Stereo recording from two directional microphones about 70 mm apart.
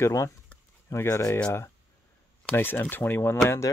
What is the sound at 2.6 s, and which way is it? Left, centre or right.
Speech, left.